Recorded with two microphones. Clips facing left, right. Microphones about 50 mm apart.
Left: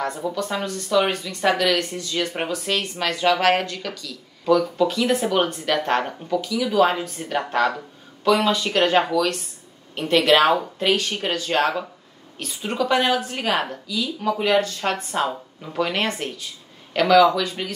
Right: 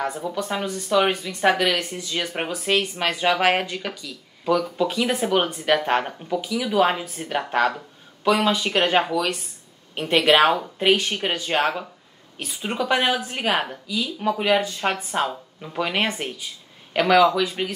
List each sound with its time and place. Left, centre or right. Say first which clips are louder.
0.0 s speech: left 1 dB; centre